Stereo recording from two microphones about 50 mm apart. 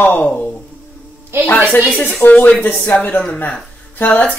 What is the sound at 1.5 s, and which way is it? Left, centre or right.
Speech, left.